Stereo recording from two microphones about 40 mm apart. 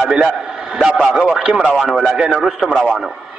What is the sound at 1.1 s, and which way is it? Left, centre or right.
Speech, right.